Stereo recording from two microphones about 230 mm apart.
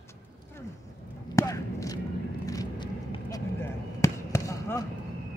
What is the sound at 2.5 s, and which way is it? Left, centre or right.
Vehicle, centre.